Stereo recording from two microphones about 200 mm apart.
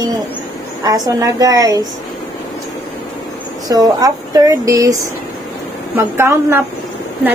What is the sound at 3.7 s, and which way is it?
A woman's voice, 20° right (ahead or behind).